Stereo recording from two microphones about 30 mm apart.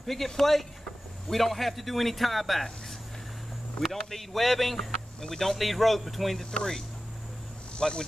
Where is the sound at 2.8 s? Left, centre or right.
Centre.